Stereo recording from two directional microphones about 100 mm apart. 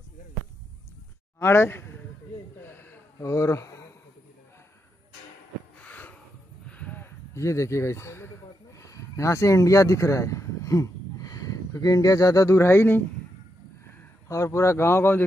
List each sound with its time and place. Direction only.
1.4 s speech: 25° left (ahead or behind)
2.6 s a sound: 20° left (ahead or behind)
3.2 s speech: 30° left (ahead or behind)
5.9 s snort: 20° left (ahead or behind)
6.7 s a sound: 15° left (ahead or behind)
7.3 s speech: 30° left (ahead or behind)
14.2 s speech: 30° left (ahead or behind)